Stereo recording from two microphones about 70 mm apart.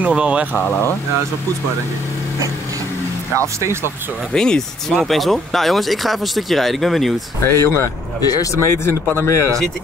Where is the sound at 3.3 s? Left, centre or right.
Right.